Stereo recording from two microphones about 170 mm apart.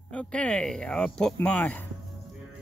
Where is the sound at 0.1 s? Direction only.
5° left (ahead or behind).